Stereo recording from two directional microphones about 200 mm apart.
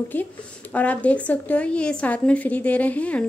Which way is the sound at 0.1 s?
10° left (ahead or behind).